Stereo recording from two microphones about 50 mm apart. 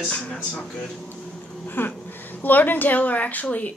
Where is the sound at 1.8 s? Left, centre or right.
Left.